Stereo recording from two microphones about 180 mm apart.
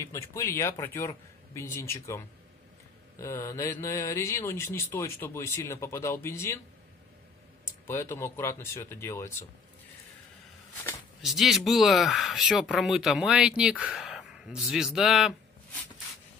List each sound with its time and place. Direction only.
0.0 s speech: 15° left (ahead or behind)
7.8 s speech: 15° left (ahead or behind)
11.2 s speech: centre (ahead or behind)